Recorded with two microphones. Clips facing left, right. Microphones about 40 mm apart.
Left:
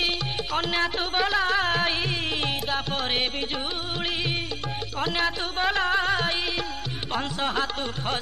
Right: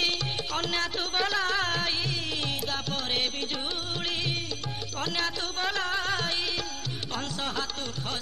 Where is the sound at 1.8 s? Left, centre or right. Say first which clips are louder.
Left 5 dB; left.